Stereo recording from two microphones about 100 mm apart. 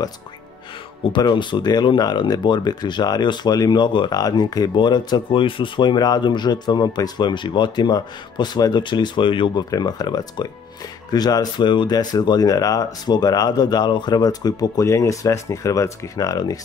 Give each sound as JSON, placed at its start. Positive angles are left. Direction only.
{"t": 1.1, "sound": "speech", "side_deg": 50}
{"t": 9.7, "sound": "speech", "side_deg": 40}